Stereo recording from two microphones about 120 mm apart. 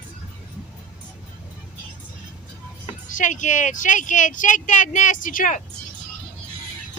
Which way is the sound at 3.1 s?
90° left.